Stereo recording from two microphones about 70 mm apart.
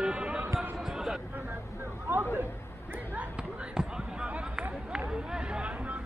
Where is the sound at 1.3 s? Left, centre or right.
Right.